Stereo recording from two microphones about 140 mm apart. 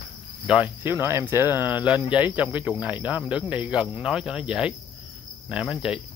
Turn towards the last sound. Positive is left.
turn(degrees=-5)  # may be behind; listen again after turning